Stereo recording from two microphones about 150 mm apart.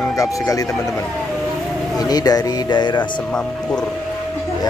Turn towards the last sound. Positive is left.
turn(degrees=5)  # may be behind; listen again after turning